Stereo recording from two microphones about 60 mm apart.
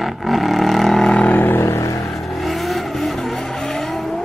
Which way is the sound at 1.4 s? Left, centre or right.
Left.